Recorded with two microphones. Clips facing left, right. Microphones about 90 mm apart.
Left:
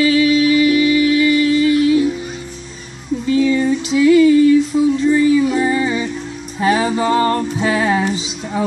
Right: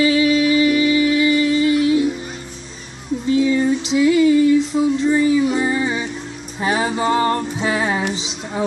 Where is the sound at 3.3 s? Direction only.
20° right (ahead or behind).